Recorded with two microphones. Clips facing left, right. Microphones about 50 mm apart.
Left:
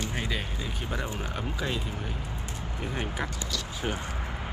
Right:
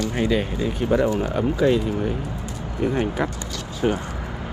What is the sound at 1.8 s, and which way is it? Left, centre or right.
Speech, right.